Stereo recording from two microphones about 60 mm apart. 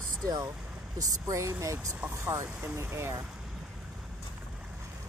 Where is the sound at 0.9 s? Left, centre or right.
Right.